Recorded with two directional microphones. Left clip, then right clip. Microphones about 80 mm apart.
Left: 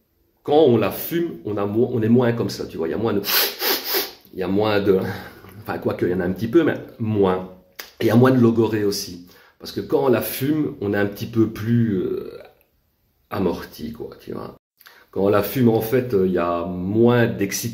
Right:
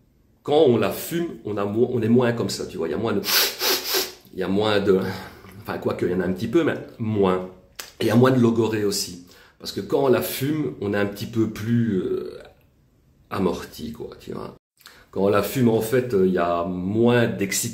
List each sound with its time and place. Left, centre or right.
0.6 s speech: centre
4.4 s speech: centre
13.3 s speech: centre